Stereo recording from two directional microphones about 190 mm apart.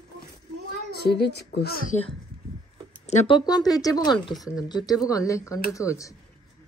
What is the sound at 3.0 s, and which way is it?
Speech, 35° left (ahead or behind).